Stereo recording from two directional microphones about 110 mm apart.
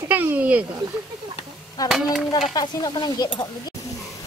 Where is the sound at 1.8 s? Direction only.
35° left (ahead or behind).